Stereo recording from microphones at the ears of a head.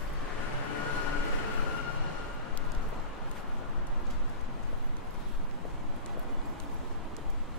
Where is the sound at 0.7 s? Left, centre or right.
Left.